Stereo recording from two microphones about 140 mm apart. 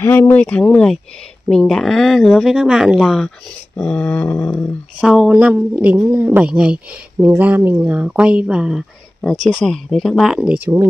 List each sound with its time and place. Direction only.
0.0 s speech: 15° left (ahead or behind); by 3.3 s centre (ahead or behind)
3.7 s speech: 10° left (ahead or behind)
5.0 s speech: 5° right (ahead or behind)